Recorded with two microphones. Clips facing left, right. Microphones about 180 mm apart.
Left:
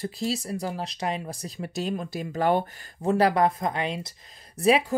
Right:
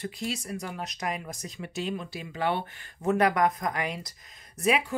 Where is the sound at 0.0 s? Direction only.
35° left (ahead or behind).